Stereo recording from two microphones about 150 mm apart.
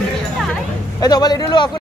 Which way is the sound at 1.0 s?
25° left (ahead or behind).